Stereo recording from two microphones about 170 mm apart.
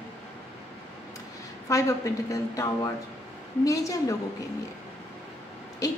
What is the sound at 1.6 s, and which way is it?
A woman's voice, 20° left (ahead or behind).